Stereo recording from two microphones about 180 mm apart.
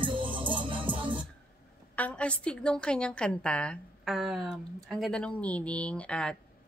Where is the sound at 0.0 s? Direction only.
25° right (ahead or behind).